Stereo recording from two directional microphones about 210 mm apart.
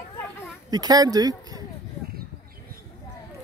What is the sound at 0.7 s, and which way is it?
Speech, 20° right (ahead or behind).